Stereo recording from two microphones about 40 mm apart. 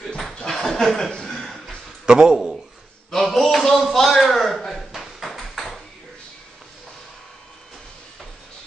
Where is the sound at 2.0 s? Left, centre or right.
Centre.